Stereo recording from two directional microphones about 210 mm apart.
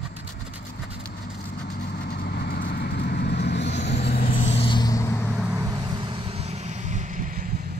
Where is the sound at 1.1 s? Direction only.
45° left (ahead or behind).